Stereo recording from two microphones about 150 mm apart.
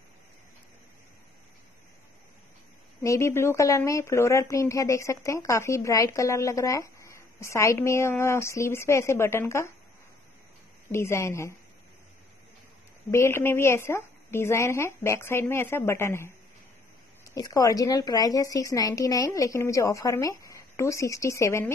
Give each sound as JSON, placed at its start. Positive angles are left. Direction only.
{"t": 3.0, "sound": "speech", "side_deg": 20}
{"t": 10.9, "sound": "speech", "side_deg": 15}
{"t": 13.1, "sound": "speech", "side_deg": 15}